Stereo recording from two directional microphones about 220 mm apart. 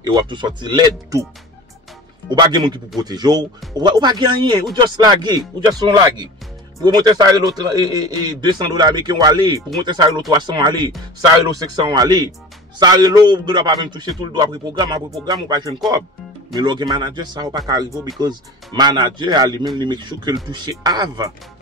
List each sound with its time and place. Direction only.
0.0 s a man's voice: 20° right (ahead or behind)
2.2 s a man's voice: 20° right (ahead or behind)